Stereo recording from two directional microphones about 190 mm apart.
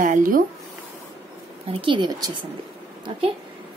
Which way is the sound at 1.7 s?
25° right (ahead or behind).